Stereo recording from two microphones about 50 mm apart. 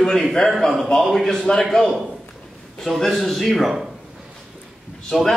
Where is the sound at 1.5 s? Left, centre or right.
Left.